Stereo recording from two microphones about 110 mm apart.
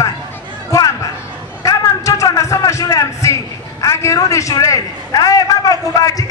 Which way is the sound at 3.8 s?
25° left (ahead or behind).